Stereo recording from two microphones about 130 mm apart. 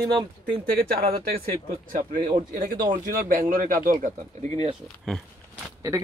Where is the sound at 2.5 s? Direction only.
90° right.